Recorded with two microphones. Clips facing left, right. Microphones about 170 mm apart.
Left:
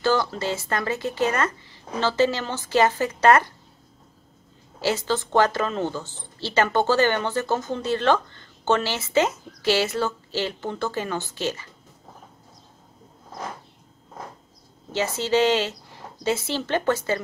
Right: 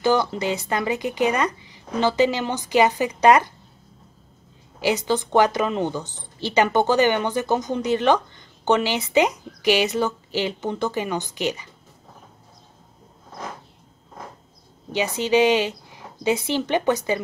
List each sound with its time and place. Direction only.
0.0 s a woman's voice: 20° right (ahead or behind)
4.8 s a woman's voice: 15° right (ahead or behind)
14.9 s a woman's voice: 15° right (ahead or behind)